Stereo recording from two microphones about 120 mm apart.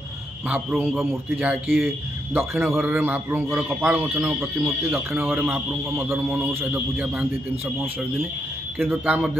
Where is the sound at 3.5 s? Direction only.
5° right (ahead or behind).